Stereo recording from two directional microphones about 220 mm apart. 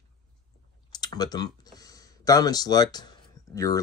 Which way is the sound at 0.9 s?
20° left (ahead or behind).